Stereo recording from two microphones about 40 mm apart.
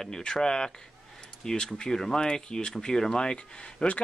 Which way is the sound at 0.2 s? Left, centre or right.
Centre.